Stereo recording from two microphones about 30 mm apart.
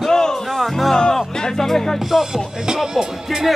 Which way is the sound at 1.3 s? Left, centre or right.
Centre.